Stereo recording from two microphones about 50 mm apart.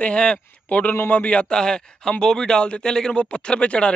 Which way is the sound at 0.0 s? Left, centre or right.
Left.